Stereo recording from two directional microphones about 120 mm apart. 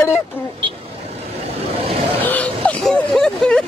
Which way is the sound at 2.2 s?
15° left (ahead or behind).